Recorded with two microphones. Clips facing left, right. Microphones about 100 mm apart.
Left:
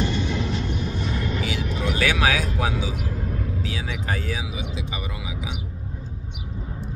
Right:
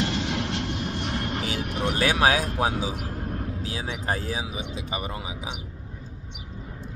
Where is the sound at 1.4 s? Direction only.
50° right (ahead or behind).